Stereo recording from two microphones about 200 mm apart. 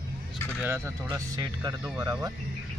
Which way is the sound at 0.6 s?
10° right (ahead or behind).